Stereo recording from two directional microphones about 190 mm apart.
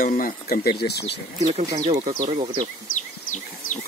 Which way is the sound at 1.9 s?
35° right (ahead or behind).